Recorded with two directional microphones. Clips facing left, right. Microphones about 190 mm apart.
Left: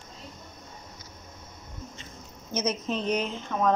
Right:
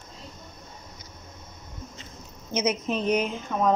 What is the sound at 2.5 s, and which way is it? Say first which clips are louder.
Speech: right 3 dB; 20° right (ahead or behind).